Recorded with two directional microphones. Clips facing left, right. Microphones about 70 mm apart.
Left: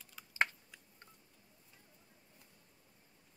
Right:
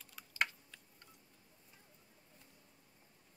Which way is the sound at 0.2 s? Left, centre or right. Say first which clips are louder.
Even; centre.